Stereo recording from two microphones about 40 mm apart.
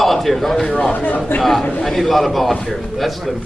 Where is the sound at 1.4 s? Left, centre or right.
Centre.